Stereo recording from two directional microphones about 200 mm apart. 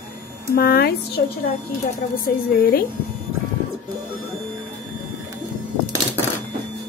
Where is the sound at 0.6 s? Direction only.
50° left (ahead or behind).